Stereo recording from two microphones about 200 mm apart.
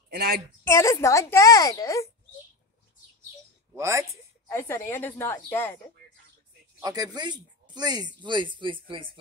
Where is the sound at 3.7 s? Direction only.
15° right (ahead or behind).